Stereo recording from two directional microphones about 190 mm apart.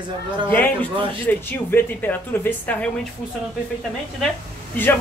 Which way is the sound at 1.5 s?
10° left (ahead or behind).